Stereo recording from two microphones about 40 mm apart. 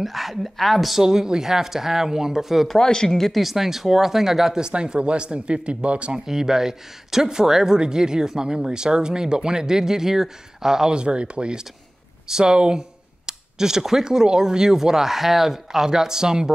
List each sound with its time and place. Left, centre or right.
0.0 s speech: centre
1.0 s speech: centre
2.8 s speech: centre
3.3 s speech: centre; by 6.1 s right
6.1 s speech: centre
11.0 s speech: right